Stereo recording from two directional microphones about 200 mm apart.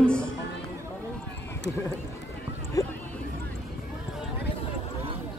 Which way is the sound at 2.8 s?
15° left (ahead or behind).